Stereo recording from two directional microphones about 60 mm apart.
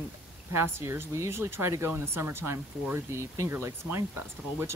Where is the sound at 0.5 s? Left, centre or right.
Right.